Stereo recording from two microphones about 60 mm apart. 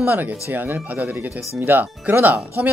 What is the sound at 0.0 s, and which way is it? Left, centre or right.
Speech, right.